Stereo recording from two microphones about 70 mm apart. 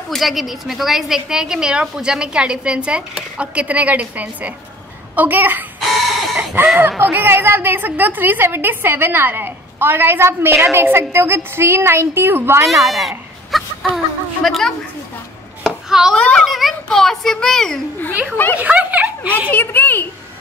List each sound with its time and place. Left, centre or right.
0.1 s a woman's voice: centre; by 12.6 s right
12.6 s a child's voice: centre
13.5 s chicken: centre
13.9 s a child's voice: centre
15.6 s chopping: centre
16.2 s a child's voice: centre
16.4 s a child's voice: centre
18.6 s a sound: right
19.5 s a woman's voice: left